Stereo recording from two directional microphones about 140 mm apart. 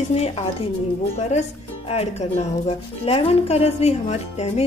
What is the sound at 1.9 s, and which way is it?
Speech, 50° left (ahead or behind).